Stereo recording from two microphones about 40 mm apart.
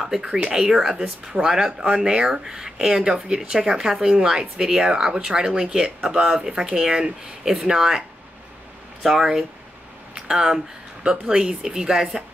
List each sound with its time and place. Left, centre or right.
0.0 s speech: centre
1.7 s speech: right
2.0 s speech: centre
9.0 s speech: centre